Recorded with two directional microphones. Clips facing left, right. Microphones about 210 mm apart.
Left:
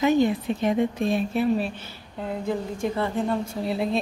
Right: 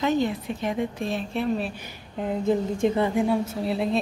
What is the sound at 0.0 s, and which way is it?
A woman's voice, 10° left (ahead or behind).